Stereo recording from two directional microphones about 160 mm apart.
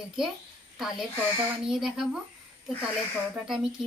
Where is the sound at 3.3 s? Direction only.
5° right (ahead or behind).